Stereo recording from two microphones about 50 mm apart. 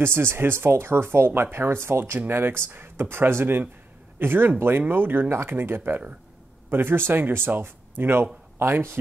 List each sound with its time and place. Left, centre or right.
0.0 s speech: right
2.1 s speech: right